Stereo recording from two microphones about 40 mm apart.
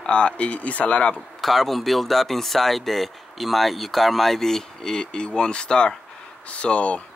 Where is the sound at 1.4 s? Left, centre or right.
Centre.